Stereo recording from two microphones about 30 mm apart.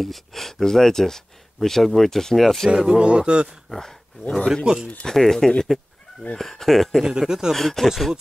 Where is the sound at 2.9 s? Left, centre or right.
Right.